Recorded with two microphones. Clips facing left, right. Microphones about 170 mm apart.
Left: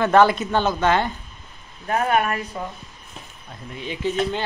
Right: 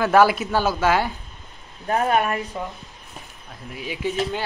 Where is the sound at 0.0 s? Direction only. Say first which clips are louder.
Left 1 dB; 5° right (ahead or behind).